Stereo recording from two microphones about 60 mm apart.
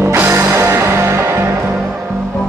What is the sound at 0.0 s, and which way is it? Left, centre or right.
Music, right.